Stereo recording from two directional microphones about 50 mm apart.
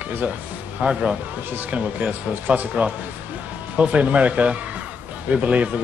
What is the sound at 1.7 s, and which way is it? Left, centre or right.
Speech, right.